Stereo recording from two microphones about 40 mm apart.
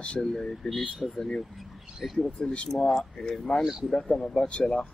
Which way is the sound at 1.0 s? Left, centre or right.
Centre.